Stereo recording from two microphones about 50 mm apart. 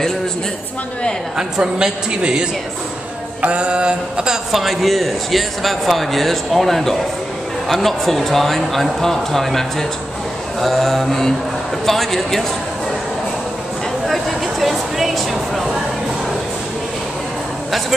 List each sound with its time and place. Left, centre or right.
1.6 s a man's voice: centre
3.4 s mantra: right
4.5 s speech: centre
14.0 s a sound: centre